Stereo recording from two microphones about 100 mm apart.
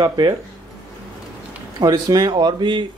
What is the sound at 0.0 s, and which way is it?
Speech, 40° right (ahead or behind).